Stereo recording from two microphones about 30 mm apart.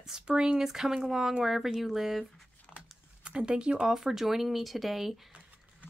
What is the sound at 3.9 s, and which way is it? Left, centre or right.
Speech, centre.